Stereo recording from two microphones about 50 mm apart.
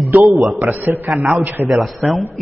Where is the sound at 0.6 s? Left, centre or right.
Right.